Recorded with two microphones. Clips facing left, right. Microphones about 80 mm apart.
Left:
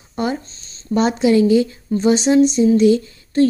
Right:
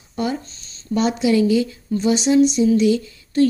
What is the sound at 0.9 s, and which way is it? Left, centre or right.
A woman's voice, left.